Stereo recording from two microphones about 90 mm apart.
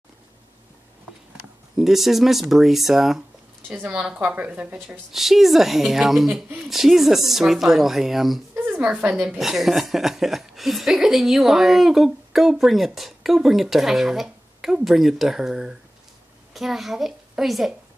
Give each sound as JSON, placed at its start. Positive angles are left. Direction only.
{"t": 1.8, "sound": "speech", "side_deg": -5}
{"t": 3.6, "sound": "a woman's voice", "side_deg": -20}
{"t": 3.9, "sound": "a woman's voice", "side_deg": -10}
{"t": 4.7, "sound": "speech", "side_deg": 0}
{"t": 8.5, "sound": "a woman's voice", "side_deg": -15}